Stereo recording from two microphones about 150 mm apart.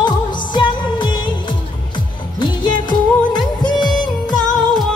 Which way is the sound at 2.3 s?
30° left (ahead or behind).